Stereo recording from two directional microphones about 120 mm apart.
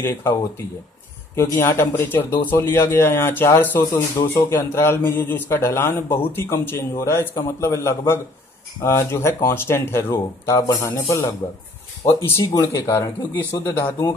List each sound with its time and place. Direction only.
0.0 s a man's voice: 20° left (ahead or behind)